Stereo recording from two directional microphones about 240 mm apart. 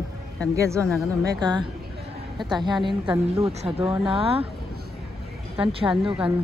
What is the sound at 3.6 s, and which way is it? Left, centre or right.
Speech, right.